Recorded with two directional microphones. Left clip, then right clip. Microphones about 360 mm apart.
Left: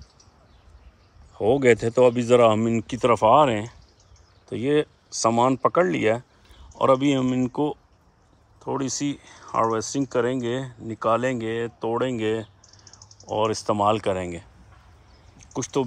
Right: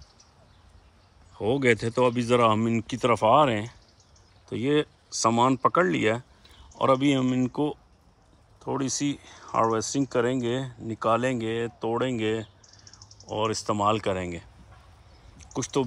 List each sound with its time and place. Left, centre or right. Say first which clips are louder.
1.4 s speech: left 5 dB; centre
12.6 s a sound: left 1 dB; left
13.3 s speech: left 4 dB; centre
15.7 s speech: left 2 dB; centre